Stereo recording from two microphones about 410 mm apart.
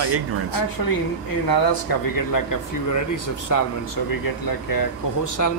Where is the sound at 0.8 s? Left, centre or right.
Left.